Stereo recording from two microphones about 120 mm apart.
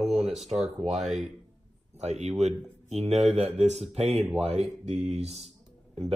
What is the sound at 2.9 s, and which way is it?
Speech, 60° right (ahead or behind).